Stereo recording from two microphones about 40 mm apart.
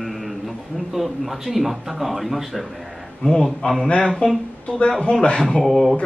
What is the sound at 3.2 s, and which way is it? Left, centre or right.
Speech, centre.